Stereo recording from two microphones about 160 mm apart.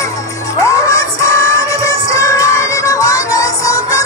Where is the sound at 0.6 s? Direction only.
20° left (ahead or behind).